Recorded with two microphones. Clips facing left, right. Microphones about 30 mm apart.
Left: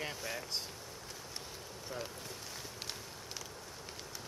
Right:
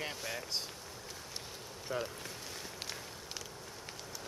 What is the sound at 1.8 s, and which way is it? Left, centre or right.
Speech, centre.